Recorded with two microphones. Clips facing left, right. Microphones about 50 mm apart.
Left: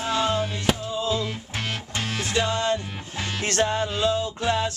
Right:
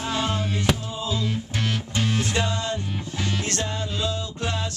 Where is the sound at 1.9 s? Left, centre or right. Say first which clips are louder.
Even; left.